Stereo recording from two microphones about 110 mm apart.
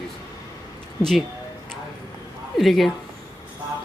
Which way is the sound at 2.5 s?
Centre (ahead or behind).